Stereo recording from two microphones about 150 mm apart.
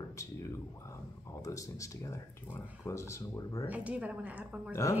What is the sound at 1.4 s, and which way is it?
Speech, 20° left (ahead or behind).